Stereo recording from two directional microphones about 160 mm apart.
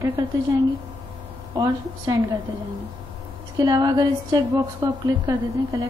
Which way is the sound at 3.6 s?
25° right (ahead or behind).